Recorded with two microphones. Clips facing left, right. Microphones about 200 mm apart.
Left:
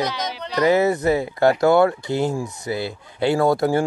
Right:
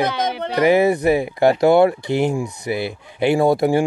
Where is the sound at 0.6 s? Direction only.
15° right (ahead or behind).